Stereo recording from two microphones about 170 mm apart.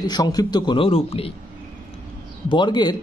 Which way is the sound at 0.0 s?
25° left (ahead or behind).